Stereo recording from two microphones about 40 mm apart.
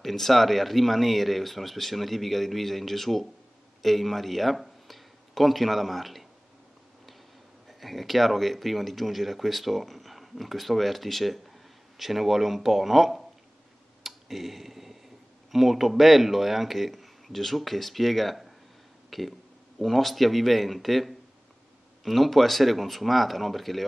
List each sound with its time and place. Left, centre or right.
0.0 s speech: centre
7.6 s speech: centre
14.0 s tick-tock: centre
15.5 s speech: centre